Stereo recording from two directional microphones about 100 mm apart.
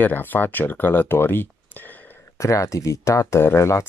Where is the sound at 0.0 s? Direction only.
20° left (ahead or behind).